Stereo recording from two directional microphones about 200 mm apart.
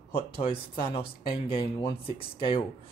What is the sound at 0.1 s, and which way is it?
Speech, 25° left (ahead or behind).